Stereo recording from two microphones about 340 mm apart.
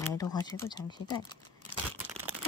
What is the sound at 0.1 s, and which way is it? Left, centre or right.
Speech, centre.